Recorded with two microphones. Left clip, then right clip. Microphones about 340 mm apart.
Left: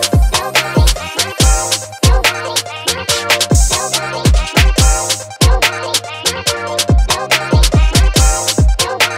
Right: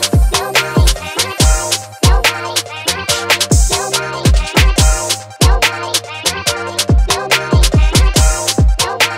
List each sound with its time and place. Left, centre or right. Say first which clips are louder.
0.0 s music: even; centre